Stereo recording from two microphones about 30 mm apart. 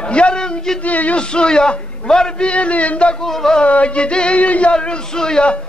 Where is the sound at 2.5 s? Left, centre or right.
Left.